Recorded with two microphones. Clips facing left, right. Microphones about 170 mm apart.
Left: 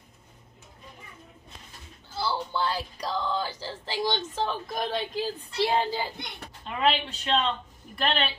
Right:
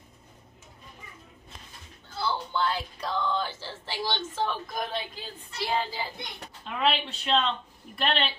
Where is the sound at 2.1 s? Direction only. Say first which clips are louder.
Left 1 dB; 5° left (ahead or behind).